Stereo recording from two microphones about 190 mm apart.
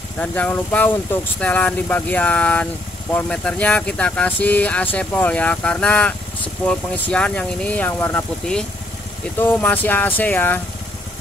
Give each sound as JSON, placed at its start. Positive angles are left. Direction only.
{"t": 0.2, "sound": "speech", "side_deg": 5}